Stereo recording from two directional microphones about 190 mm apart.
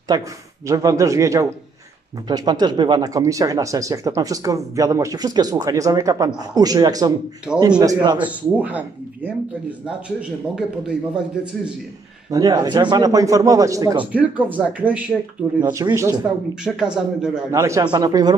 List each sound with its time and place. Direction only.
0.1 s speech: 20° right (ahead or behind)
7.5 s a man's voice: 5° right (ahead or behind)
7.8 s speech: 20° right (ahead or behind)
8.2 s speech: 10° right (ahead or behind)
12.3 s speech: 20° right (ahead or behind)
17.5 s speech: 15° right (ahead or behind)